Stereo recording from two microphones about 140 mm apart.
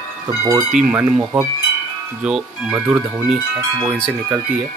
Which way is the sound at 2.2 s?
5° right (ahead or behind).